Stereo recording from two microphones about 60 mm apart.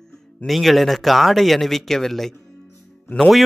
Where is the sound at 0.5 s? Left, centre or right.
Centre.